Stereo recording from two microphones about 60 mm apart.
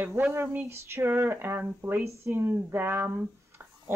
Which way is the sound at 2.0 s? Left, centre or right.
Right.